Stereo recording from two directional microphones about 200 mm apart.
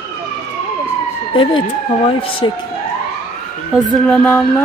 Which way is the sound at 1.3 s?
25° left (ahead or behind).